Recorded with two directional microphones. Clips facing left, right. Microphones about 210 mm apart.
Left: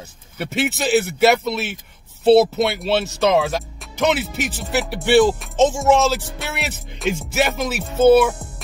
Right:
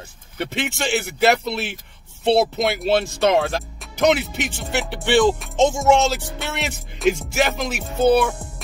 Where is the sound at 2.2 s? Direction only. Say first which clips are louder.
Left 5 dB; centre (ahead or behind).